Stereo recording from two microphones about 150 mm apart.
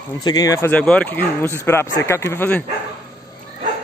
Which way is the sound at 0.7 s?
10° left (ahead or behind).